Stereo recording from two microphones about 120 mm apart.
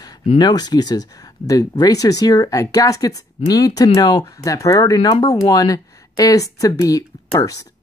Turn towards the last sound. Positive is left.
turn(degrees=30)  # may be behind; listen again after turning